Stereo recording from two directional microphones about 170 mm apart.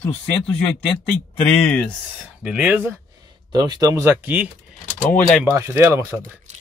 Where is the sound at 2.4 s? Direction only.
5° right (ahead or behind).